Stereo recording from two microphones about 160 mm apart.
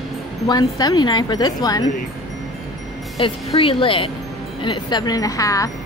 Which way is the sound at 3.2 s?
35° left (ahead or behind).